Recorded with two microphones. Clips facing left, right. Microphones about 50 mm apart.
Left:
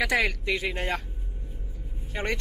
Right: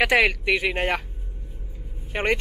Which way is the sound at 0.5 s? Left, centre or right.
Right.